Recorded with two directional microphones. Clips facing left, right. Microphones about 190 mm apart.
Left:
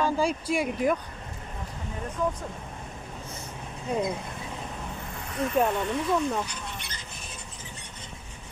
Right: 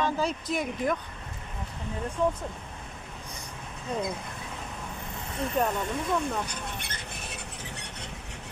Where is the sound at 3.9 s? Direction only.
10° left (ahead or behind).